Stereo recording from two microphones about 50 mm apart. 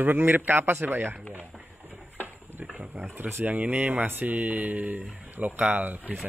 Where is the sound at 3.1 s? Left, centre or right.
Right.